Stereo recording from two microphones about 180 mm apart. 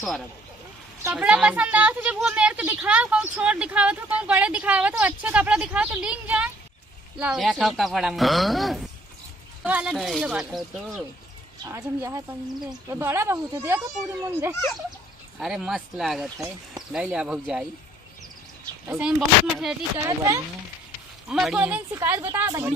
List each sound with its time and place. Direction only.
1.0 s a woman's voice: 5° right (ahead or behind)
11.7 s a woman's voice: 15° right (ahead or behind)
15.3 s speech: 5° right (ahead or behind)
16.3 s speech: 20° right (ahead or behind)
16.9 s speech: 5° right (ahead or behind)
18.9 s speech: 5° right (ahead or behind)
20.0 s speech: 20° right (ahead or behind)
21.3 s a woman's voice: 5° right (ahead or behind)